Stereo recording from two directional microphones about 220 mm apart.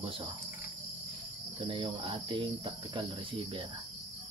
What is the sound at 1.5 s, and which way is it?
Cricket, 25° right (ahead or behind).